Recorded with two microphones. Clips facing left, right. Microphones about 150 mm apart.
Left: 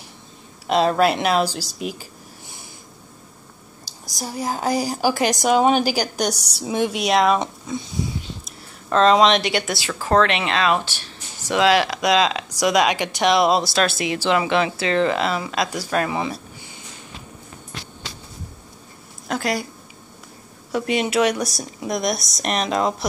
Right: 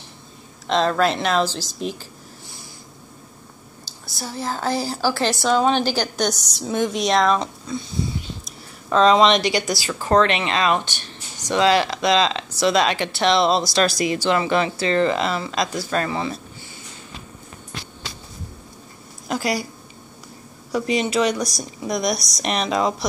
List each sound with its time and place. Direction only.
0.7 s a woman's voice: 10° left (ahead or behind)
4.2 s a woman's voice: 15° left (ahead or behind)
7.3 s speech: 20° left (ahead or behind)
8.8 s a woman's voice: centre (ahead or behind)
19.2 s speech: centre (ahead or behind)
20.7 s speech: 5° left (ahead or behind)